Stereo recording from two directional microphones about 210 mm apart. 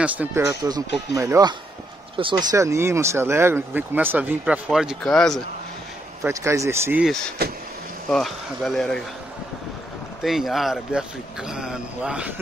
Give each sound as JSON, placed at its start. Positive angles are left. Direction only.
{"t": 0.0, "sound": "speech", "side_deg": -10}
{"t": 2.6, "sound": "speech", "side_deg": -15}
{"t": 6.2, "sound": "speech", "side_deg": -15}
{"t": 8.1, "sound": "speech", "side_deg": 0}
{"t": 10.2, "sound": "speech", "side_deg": 0}